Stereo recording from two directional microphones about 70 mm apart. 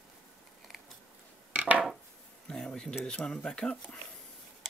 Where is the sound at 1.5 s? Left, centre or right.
Right.